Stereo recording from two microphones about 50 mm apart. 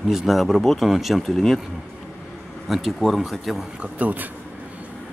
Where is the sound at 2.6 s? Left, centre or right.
Centre.